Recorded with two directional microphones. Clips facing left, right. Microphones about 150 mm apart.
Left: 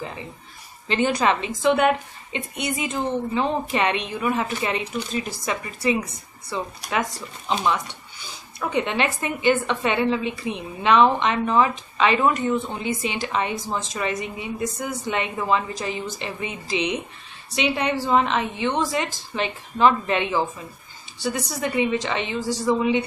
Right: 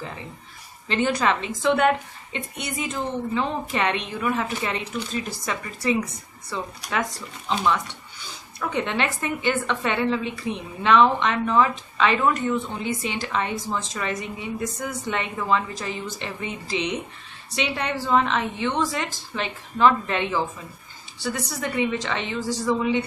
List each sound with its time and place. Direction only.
0.8 s speech: 15° left (ahead or behind)